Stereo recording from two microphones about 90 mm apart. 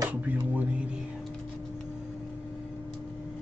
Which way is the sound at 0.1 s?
20° right (ahead or behind).